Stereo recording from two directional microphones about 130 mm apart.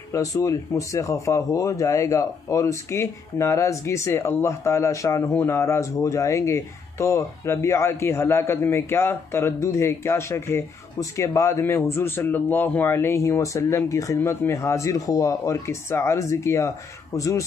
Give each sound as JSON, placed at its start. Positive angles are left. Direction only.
{"t": 0.1, "sound": "speech", "side_deg": 25}